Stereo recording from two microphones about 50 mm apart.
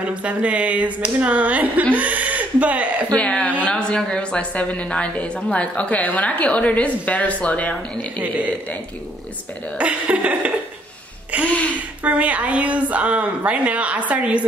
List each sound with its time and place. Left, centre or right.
0.1 s speech: right
3.1 s speech: left
8.2 s speech: right
9.8 s speech: right
12.0 s speech: right